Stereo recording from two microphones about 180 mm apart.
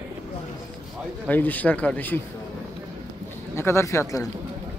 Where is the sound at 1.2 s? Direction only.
10° left (ahead or behind).